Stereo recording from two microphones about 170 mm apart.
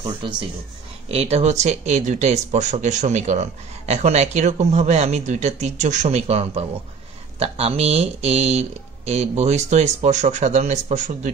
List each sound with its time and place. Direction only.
0.2 s speech: 30° right (ahead or behind)